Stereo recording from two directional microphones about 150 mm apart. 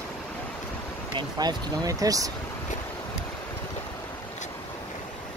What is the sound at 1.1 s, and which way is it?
Speech, 25° right (ahead or behind).